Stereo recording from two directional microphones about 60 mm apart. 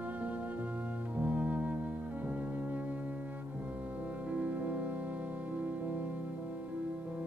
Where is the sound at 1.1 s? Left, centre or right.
Right.